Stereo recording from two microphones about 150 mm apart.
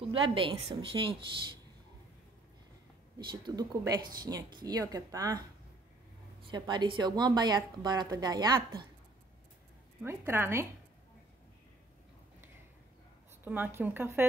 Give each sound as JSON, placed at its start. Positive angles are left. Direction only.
{"t": 0.0, "sound": "a woman's voice", "side_deg": -35}
{"t": 3.3, "sound": "a woman's voice", "side_deg": -30}
{"t": 6.5, "sound": "a woman's voice", "side_deg": -30}
{"t": 10.0, "sound": "speech", "side_deg": -15}
{"t": 13.4, "sound": "speech", "side_deg": -15}